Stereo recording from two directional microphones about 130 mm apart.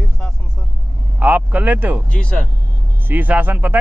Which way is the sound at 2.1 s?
10° left (ahead or behind).